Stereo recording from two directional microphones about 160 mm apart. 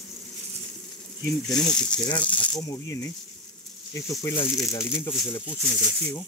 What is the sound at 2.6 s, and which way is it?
Speech, 20° left (ahead or behind).